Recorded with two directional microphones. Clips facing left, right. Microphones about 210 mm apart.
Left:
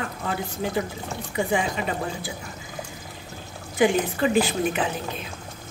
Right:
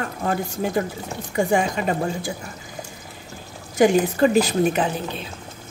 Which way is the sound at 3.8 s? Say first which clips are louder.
Right 5 dB; 40° right (ahead or behind).